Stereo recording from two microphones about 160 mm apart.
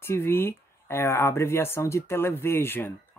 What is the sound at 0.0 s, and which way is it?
Speech, 15° left (ahead or behind).